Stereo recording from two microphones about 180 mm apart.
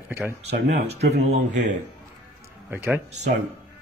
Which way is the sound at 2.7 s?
10° right (ahead or behind).